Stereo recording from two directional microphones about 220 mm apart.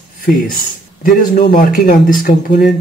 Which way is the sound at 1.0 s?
40° left (ahead or behind).